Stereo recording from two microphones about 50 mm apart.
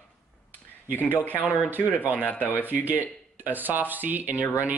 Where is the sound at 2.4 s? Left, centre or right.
Left.